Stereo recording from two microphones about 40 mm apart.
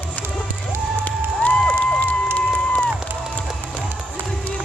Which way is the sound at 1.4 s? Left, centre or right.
Left.